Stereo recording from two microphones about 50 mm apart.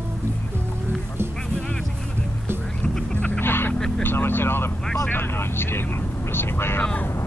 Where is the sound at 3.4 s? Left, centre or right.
Left.